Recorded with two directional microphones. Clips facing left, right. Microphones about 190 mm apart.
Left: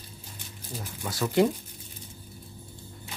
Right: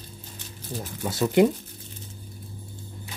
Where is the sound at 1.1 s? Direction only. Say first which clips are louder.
Right 4 dB; 20° right (ahead or behind).